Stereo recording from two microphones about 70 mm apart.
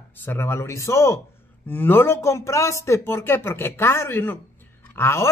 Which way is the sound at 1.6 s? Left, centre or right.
Left.